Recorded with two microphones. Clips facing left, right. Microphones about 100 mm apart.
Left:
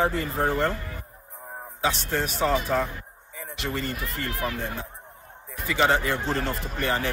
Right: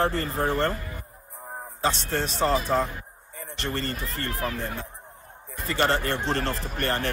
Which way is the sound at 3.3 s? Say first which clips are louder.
Even; 90° left.